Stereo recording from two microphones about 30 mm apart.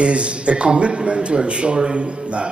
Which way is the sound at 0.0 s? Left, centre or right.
Right.